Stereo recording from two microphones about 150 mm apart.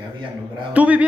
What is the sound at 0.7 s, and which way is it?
Speech, 10° right (ahead or behind).